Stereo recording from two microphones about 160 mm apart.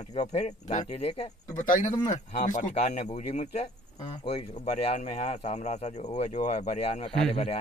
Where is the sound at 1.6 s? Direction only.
55° left (ahead or behind).